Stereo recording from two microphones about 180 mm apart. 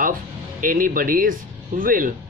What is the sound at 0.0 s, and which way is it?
Speech, 50° right (ahead or behind).